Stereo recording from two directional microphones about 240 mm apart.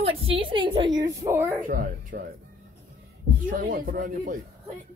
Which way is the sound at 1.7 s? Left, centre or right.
Right.